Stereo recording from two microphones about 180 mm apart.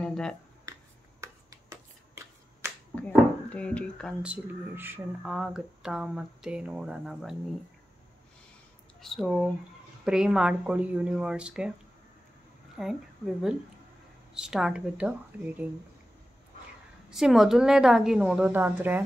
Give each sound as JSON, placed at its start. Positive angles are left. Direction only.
{"t": 0.0, "sound": "a sound", "side_deg": 5}
{"t": 1.2, "sound": "finger snapping", "side_deg": -15}
{"t": 3.0, "sound": "speech", "side_deg": 5}
{"t": 4.2, "sound": "speech", "side_deg": -10}
{"t": 9.0, "sound": "speech", "side_deg": 0}
{"t": 12.7, "sound": "speech", "side_deg": 0}
{"t": 17.1, "sound": "speech", "side_deg": 0}